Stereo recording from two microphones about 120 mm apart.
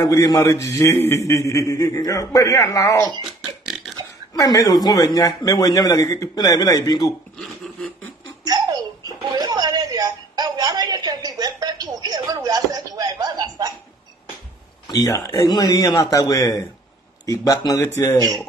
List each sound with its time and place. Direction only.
0.0 s a man's voice: 30° left (ahead or behind)
3.3 s burping: centre (ahead or behind)
4.3 s a man's voice: 30° left (ahead or behind)
8.5 s a sound: 35° right (ahead or behind)
14.9 s a man's voice: 30° left (ahead or behind)